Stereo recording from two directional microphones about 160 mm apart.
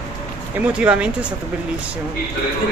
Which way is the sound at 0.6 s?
10° right (ahead or behind).